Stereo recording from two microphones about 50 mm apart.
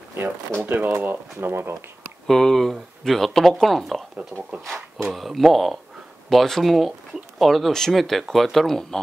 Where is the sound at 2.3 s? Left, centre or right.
Centre.